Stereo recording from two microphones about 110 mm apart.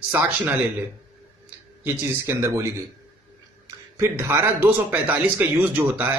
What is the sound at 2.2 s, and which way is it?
A man's voice, 25° right (ahead or behind).